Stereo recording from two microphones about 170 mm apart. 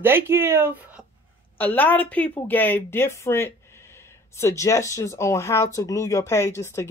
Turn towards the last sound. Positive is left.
turn(degrees=15)  # may be behind; listen again after turning